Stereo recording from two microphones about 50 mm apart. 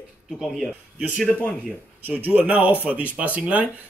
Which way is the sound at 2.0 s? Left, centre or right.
Right.